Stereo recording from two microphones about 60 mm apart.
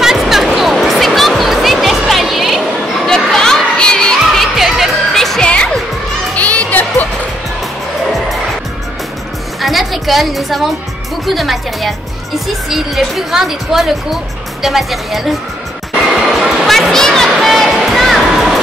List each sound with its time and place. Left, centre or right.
0.0 s a sound: centre
0.6 s music: centre
3.3 s crowd: centre
4.3 s music: centre
5.1 s music: centre
6.3 s a sound: left
9.6 s music: centre
11.2 s a woman's voice: centre
16.1 s music: centre